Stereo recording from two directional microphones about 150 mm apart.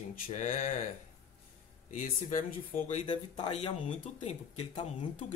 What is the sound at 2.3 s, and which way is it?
Speech, 60° left (ahead or behind).